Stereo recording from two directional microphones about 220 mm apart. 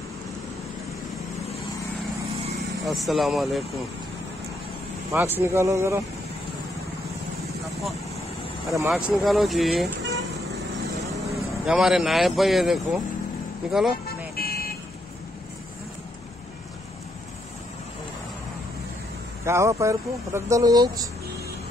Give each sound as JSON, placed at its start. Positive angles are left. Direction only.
{"t": 2.8, "sound": "speech", "side_deg": 0}
{"t": 5.1, "sound": "speech", "side_deg": -10}
{"t": 8.7, "sound": "speech", "side_deg": -10}
{"t": 9.1, "sound": "speech", "side_deg": 0}
{"t": 11.3, "sound": "speech", "side_deg": 0}
{"t": 14.0, "sound": "vehicle", "side_deg": 45}
{"t": 19.4, "sound": "speech", "side_deg": -10}